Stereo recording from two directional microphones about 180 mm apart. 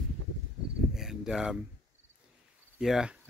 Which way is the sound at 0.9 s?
Centre (ahead or behind).